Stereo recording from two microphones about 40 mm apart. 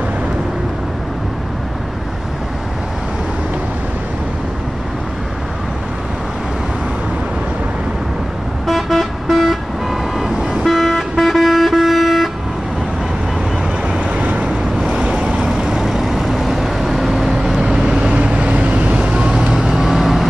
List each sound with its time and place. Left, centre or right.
8.6 s vehicle: centre
13.8 s vehicle: right
15.2 s vehicle: right
15.5 s vehicle: centre
17.9 s vehicle: right
19.7 s vehicle: centre